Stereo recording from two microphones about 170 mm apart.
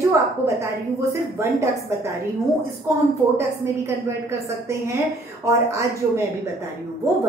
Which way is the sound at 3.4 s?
15° right (ahead or behind).